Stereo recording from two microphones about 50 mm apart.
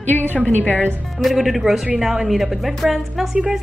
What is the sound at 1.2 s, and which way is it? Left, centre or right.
A woman's voice, centre.